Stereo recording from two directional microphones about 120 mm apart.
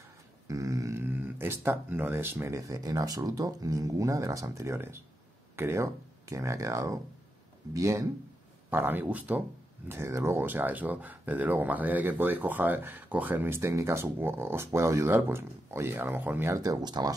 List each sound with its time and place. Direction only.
0.5 s speech: 30° right (ahead or behind)
8.6 s speech: 15° right (ahead or behind); by 17.1 s 35° right (ahead or behind)